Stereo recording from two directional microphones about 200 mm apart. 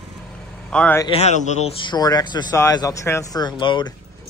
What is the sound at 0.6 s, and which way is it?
Speech, 5° left (ahead or behind).